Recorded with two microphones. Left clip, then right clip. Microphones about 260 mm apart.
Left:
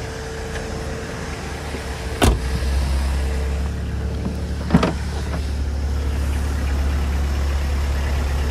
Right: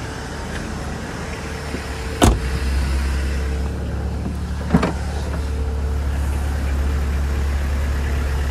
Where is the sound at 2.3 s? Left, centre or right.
Left.